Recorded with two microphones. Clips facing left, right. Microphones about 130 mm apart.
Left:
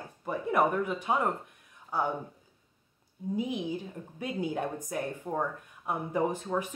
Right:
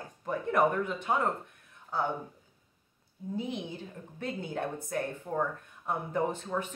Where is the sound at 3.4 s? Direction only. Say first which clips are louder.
Left 4 dB; 10° left (ahead or behind).